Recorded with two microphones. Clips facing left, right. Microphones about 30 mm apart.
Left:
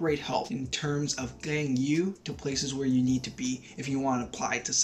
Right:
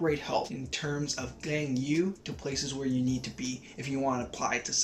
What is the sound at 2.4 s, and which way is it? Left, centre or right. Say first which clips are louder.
Speech: left 3 dB; centre.